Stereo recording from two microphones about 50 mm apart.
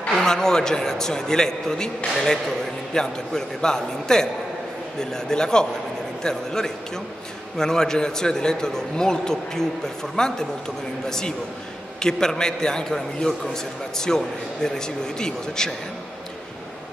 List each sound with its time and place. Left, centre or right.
0.2 s a man's voice: centre
2.9 s a man's voice: centre